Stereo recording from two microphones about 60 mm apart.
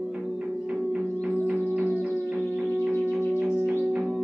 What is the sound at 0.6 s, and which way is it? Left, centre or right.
Music, right.